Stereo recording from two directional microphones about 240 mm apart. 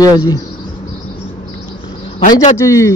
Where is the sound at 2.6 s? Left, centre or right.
Centre.